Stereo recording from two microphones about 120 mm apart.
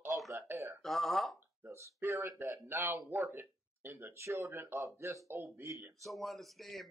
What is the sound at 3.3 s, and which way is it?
Speech, 15° right (ahead or behind).